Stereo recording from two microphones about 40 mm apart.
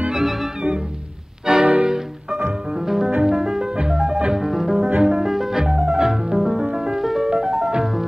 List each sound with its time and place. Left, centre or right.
0.1 s music: centre
1.6 s music: right
3.2 s music: centre